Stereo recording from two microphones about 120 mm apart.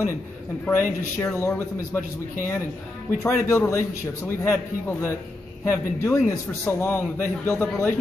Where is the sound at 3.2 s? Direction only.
20° left (ahead or behind).